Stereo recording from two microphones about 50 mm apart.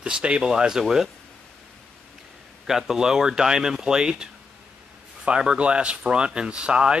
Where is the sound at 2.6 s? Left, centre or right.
Centre.